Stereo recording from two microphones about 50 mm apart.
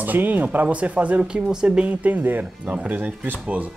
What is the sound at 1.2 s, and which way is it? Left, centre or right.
Speech, centre.